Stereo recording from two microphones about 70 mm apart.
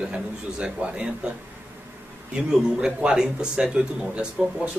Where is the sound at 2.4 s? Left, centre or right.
Centre.